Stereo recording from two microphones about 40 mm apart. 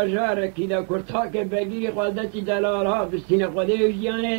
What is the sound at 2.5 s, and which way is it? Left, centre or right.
Speech, centre.